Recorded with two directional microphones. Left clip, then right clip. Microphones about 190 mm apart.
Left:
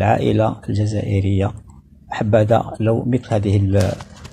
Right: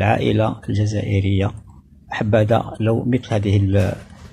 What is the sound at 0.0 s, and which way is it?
Speech, 15° right (ahead or behind).